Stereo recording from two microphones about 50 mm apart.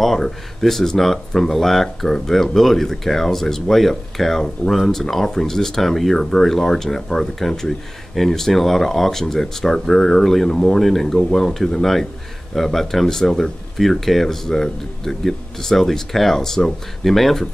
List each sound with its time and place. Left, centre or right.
0.0 s speech: centre